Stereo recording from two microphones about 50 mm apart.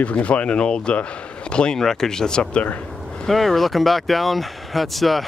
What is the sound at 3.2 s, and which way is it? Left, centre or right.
Speech, centre.